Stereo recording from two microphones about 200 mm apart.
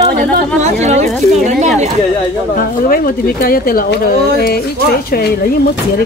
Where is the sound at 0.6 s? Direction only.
35° right (ahead or behind).